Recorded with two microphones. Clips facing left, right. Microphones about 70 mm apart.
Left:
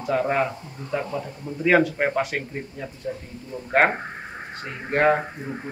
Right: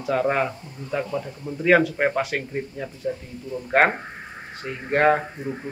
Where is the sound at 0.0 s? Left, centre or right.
Centre.